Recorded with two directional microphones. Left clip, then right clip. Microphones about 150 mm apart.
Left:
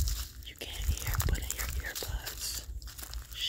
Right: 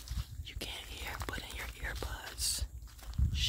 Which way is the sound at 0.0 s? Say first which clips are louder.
Left 9 dB; 90° left.